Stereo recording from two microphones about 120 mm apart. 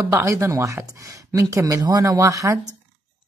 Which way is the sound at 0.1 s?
25° right (ahead or behind).